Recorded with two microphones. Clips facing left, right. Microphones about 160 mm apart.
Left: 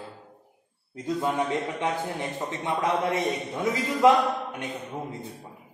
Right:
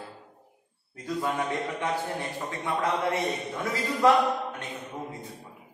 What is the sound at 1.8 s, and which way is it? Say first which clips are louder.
A man's voice: left 1 dB; 20° left (ahead or behind).